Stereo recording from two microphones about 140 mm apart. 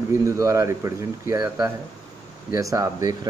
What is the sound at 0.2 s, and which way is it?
A man's voice, 20° right (ahead or behind).